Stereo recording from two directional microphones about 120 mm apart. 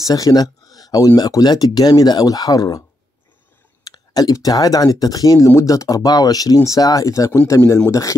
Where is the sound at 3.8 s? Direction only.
35° left (ahead or behind).